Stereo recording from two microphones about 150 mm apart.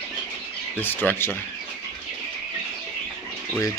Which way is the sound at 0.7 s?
15° left (ahead or behind).